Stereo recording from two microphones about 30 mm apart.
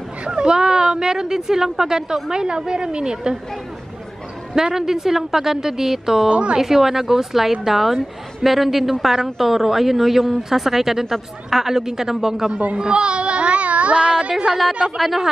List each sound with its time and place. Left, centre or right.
0.3 s speech: right
4.7 s speech: centre
6.2 s speech: right
6.6 s speech: centre
12.7 s speech: right
14.3 s speech: centre